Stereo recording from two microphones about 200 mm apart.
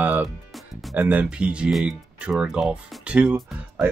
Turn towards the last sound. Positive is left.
turn(degrees=-10)  # may be behind; listen again after turning